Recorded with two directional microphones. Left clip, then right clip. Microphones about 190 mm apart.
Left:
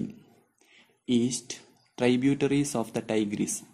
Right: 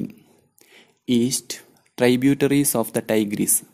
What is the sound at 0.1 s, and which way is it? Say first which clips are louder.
Speech: right 3 dB; 40° right (ahead or behind).